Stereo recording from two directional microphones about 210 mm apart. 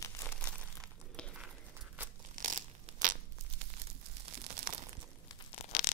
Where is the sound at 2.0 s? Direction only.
10° right (ahead or behind).